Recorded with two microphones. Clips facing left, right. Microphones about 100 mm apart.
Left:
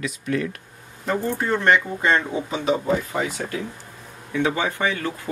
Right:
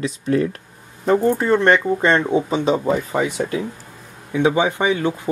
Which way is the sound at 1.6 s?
30° right (ahead or behind).